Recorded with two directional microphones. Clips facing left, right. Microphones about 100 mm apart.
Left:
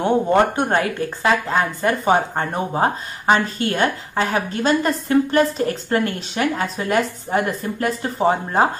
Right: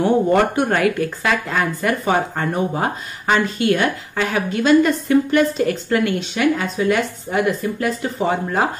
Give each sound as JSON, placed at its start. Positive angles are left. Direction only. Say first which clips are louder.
{"t": 0.0, "sound": "speech", "louder": "right 1 dB", "side_deg": 30}